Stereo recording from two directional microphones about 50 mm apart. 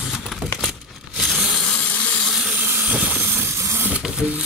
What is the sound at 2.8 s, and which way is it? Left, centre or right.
Vehicle, right.